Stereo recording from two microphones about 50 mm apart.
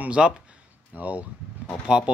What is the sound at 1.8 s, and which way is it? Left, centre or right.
Speech, centre.